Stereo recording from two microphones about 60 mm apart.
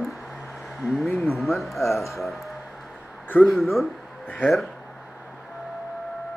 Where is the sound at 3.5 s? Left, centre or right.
Centre.